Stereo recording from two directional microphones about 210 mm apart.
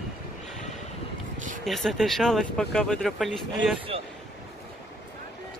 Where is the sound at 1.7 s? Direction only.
Centre (ahead or behind).